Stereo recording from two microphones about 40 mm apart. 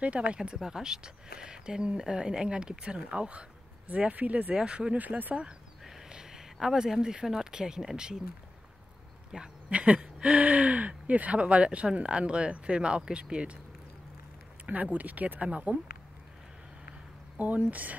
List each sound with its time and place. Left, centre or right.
0.0 s speech: right
0.6 s speech: centre; by 4.6 s right
4.6 s speech: right
4.9 s speech: right
6.0 s a sound: centre
7.5 s speech: centre
9.3 s a sound: right
9.8 s speech: right
14.7 s speech: right
17.4 s speech: right